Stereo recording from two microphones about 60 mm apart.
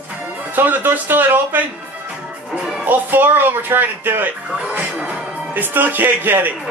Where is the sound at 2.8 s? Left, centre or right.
Right.